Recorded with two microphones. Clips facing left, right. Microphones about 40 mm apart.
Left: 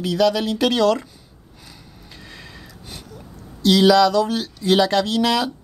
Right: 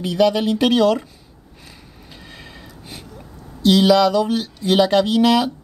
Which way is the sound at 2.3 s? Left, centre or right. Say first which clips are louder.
Right 1 dB; centre.